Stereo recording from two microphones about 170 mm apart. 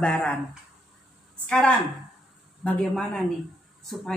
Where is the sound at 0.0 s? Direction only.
5° left (ahead or behind).